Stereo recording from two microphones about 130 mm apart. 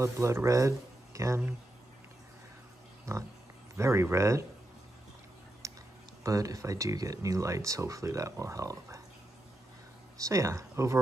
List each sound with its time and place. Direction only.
0.0 s speech: 20° right (ahead or behind)
3.7 s speech: 20° right (ahead or behind)
5.6 s a sound: 25° right (ahead or behind)
6.2 s speech: 25° right (ahead or behind)
10.2 s speech: 25° right (ahead or behind)